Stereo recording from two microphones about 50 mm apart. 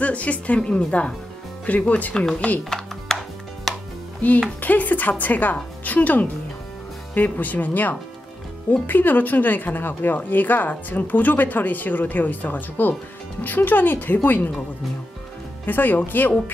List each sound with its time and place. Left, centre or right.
0.0 s speech: left
1.7 s a woman's voice: left
3.1 s chopping: centre
3.7 s chopping: centre
4.2 s a woman's voice: left
15.6 s a woman's voice: left